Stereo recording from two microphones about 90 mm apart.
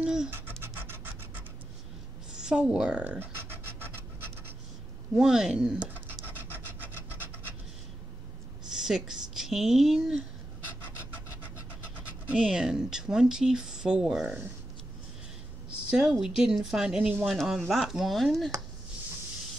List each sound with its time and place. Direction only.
0.0 s scratch: 10° right (ahead or behind)
0.3 s scratch: 25° right (ahead or behind)
2.3 s speech: 10° right (ahead or behind)
3.2 s scratch: 25° right (ahead or behind)
5.1 s speech: 5° right (ahead or behind)
6.0 s rub: 20° right (ahead or behind)
8.6 s speech: 5° right (ahead or behind)
12.3 s speech: 5° right (ahead or behind)
15.9 s speech: 5° right (ahead or behind)